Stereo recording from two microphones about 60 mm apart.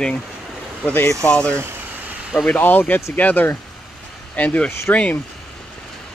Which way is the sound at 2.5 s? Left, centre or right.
Left.